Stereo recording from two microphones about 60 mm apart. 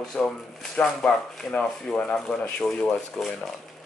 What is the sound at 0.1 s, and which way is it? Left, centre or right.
Speech, centre.